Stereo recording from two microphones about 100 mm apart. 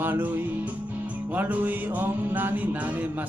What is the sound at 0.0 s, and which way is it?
Music, 20° right (ahead or behind).